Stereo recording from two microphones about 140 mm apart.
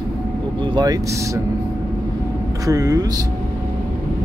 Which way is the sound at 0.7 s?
30° right (ahead or behind).